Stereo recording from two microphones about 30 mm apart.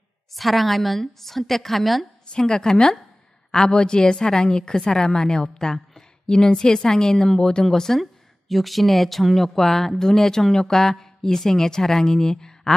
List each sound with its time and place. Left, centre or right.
0.3 s a woman's voice: centre
2.3 s a woman's voice: left
8.0 s speech: centre; by 12.7 s left